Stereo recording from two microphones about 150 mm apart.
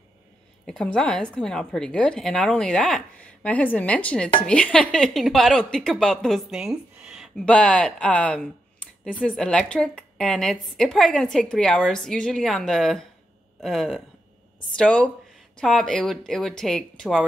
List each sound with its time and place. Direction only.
0.7 s a woman's voice: 5° left (ahead or behind)